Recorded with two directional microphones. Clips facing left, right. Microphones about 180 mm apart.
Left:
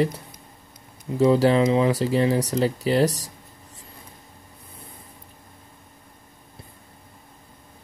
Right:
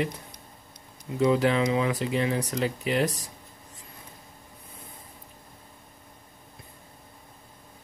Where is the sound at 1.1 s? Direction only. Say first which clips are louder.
Left 5 dB; 35° left (ahead or behind).